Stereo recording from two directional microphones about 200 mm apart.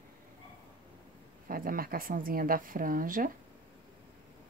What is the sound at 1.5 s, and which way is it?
Speech, 45° right (ahead or behind).